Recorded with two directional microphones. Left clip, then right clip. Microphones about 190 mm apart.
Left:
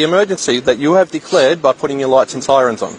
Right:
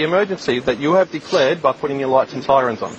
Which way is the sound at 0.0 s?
85° left.